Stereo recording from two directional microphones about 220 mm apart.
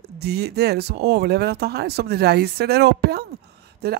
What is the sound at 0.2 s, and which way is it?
Speech, 45° right (ahead or behind).